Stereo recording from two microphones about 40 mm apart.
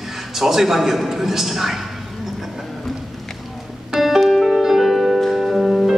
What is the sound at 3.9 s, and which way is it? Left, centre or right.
Music, centre.